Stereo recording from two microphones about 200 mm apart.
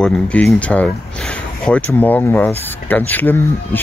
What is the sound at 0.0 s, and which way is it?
Speech, 5° left (ahead or behind).